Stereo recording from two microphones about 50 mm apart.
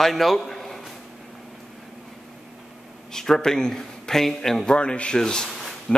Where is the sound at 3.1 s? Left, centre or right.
Centre.